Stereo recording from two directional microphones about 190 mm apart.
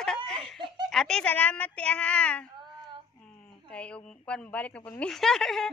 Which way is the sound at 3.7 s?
5° left (ahead or behind).